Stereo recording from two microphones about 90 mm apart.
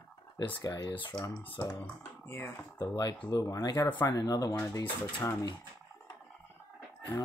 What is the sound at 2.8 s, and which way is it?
Speech, 45° left (ahead or behind).